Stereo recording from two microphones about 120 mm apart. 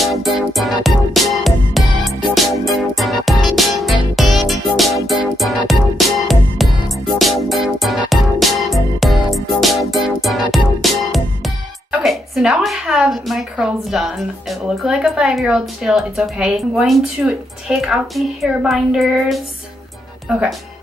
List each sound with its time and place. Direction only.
0.0 s music: centre (ahead or behind)
10.5 s speech: centre (ahead or behind)